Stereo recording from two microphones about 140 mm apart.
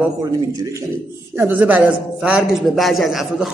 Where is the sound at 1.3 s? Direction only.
15° right (ahead or behind).